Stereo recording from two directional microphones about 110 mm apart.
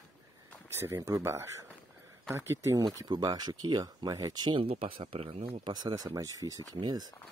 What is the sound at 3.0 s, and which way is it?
Speech, 35° right (ahead or behind).